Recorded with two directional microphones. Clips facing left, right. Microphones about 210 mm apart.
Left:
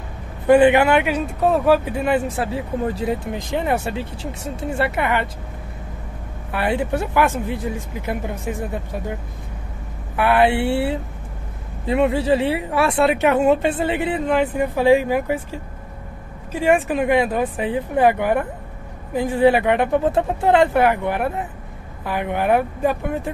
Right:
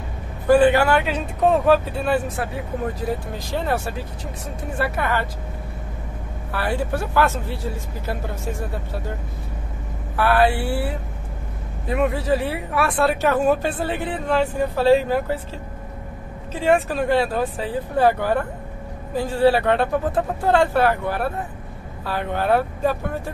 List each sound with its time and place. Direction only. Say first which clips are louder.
0.5 s speech: left 2 dB; 20° left (ahead or behind)
1.1 s speech: even; 5° left (ahead or behind)
1.9 s speech: left 2 dB; 15° left (ahead or behind)
6.5 s speech: left 3 dB; 20° left (ahead or behind)
10.1 s speech: left 2 dB; 20° left (ahead or behind)
16.5 s speech: left 2 dB; 15° left (ahead or behind)